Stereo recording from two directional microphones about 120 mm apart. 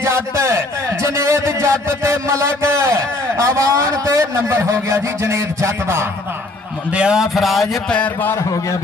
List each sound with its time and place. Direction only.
0.0 s a man's voice: 25° right (ahead or behind)
6.9 s a man's voice: 10° right (ahead or behind)
7.9 s a man's voice: 15° left (ahead or behind)